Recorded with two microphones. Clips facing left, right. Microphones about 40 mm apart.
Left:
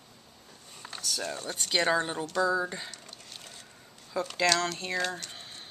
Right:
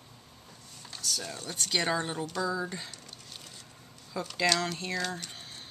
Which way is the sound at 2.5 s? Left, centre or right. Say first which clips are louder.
Left 4 dB; centre.